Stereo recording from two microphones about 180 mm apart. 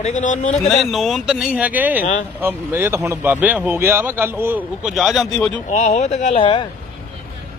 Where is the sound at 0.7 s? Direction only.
Centre (ahead or behind).